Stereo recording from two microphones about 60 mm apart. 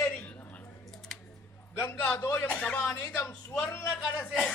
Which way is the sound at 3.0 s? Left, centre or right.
Left.